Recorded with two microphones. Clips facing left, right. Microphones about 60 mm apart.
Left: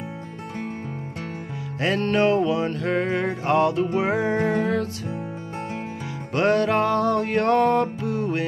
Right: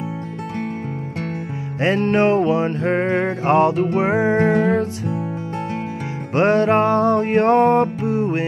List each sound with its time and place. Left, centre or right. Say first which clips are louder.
1.8 s music: right 4 dB; right
4.4 s music: right 6 dB; right
6.3 s music: right 4 dB; right